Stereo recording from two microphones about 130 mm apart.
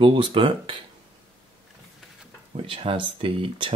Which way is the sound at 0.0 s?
45° right (ahead or behind).